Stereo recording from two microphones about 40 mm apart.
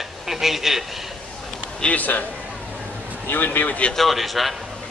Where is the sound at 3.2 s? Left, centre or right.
Left.